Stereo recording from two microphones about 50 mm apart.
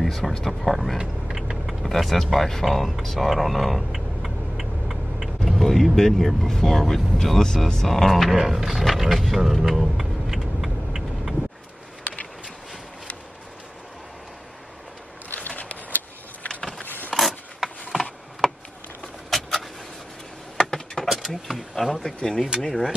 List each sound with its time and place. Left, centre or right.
0.0 s a sound: centre
0.4 s speech: centre
0.9 s vehicle: centre
1.8 s speech: centre
8.5 s roaring cats: centre
15.2 s a sound: left
17.1 s rub: centre
18.4 s a sound: centre
19.3 s vehicle: centre
20.5 s a sound: centre
21.1 s power windows: centre
22.6 s speech: centre